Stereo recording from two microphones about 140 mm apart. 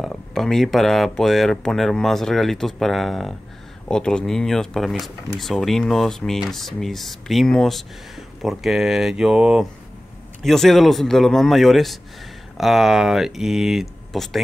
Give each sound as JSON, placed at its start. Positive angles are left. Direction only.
{"t": 0.0, "sound": "speech", "side_deg": 5}